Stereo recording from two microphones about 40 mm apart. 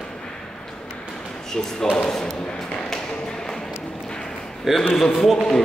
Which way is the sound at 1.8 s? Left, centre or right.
Centre.